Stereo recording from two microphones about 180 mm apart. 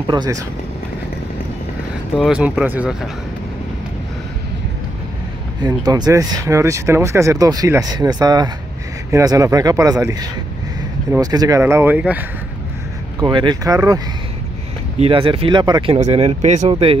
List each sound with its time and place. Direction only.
0.0 s speech: 25° right (ahead or behind)
2.1 s speech: 5° right (ahead or behind)
5.6 s speech: 20° right (ahead or behind)
13.2 s speech: 25° right (ahead or behind)
15.0 s speech: 30° right (ahead or behind)